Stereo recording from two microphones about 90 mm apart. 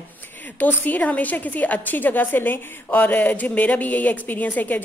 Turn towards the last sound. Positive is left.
turn(degrees=20)  # may be behind; listen again after turning